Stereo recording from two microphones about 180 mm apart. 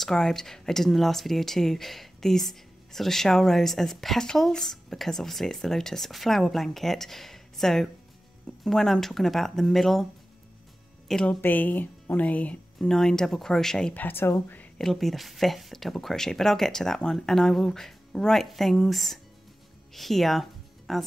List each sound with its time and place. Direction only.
0.0 s speech: centre (ahead or behind)
11.1 s speech: 5° left (ahead or behind)